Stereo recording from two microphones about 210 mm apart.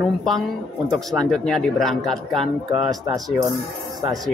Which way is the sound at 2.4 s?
20° right (ahead or behind).